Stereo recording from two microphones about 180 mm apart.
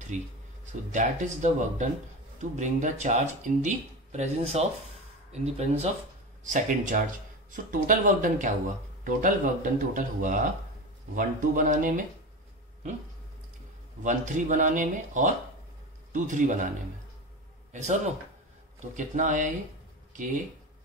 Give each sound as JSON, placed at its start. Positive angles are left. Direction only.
{"t": 0.1, "sound": "speech", "side_deg": -45}
{"t": 14.0, "sound": "speech", "side_deg": -45}
{"t": 17.7, "sound": "speech", "side_deg": -40}